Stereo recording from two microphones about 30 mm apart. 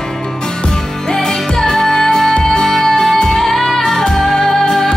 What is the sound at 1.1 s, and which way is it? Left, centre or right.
Music, centre.